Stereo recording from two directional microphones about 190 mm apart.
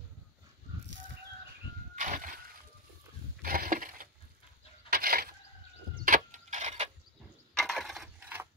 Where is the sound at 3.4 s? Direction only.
50° right (ahead or behind).